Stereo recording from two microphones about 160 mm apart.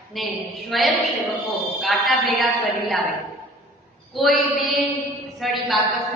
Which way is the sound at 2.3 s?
Centre (ahead or behind).